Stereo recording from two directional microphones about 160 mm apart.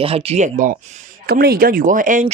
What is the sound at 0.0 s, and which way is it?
Speech, 35° right (ahead or behind).